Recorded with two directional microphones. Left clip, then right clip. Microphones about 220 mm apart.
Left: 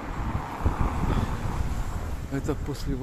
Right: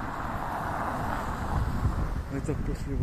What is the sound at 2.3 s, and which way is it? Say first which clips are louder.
Speech: left 5 dB; 30° left (ahead or behind).